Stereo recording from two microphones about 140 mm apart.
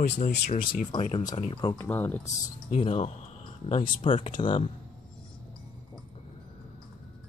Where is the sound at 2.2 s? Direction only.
55° left (ahead or behind).